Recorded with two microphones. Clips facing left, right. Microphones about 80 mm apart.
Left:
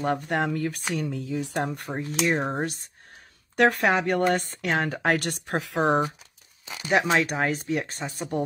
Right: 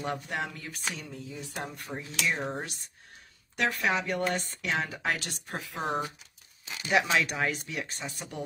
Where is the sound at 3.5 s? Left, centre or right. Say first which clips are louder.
Left 8 dB; left.